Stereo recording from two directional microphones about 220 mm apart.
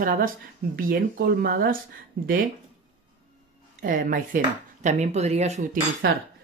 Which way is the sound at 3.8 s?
40° right (ahead or behind).